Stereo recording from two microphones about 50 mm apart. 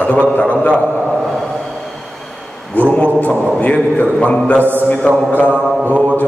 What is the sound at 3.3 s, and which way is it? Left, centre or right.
Speech, right.